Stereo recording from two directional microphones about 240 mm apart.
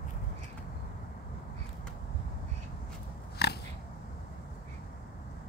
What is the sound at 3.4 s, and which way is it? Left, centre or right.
Oink, left.